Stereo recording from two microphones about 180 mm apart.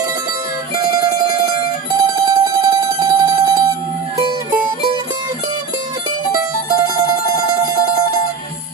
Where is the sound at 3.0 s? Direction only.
25° right (ahead or behind).